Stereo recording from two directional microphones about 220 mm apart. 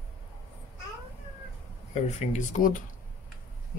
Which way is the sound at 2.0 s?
30° left (ahead or behind).